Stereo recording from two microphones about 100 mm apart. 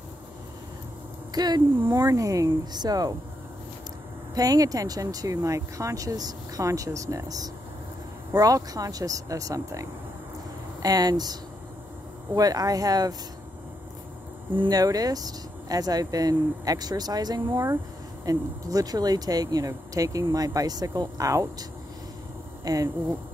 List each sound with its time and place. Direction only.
1.3 s speech: 45° right (ahead or behind)
2.0 s speech: 35° right (ahead or behind)
4.4 s speech: 35° right (ahead or behind)
12.4 s speech: 35° right (ahead or behind)
14.7 s speech: 40° right (ahead or behind)
22.7 s speech: 35° right (ahead or behind)